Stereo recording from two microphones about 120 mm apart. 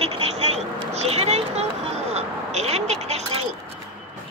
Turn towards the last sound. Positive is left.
turn(degrees=-60)  # may be behind; listen again after turning